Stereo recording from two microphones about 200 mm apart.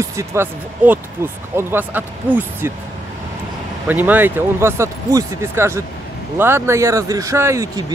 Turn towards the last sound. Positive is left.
turn(degrees=-15)  # may be behind; listen again after turning